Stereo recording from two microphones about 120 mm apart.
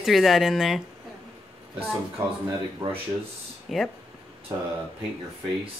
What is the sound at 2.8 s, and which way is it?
Speech, 50° right (ahead or behind).